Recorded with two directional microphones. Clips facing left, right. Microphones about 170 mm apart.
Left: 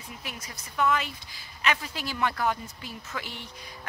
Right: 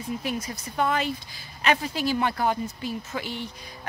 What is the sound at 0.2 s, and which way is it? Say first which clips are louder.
Speech: right 11 dB; 30° right (ahead or behind).